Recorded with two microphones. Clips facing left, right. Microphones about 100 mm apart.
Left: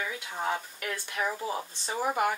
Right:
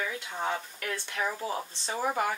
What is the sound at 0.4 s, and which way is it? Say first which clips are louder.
Speech: left 1 dB; 10° left (ahead or behind).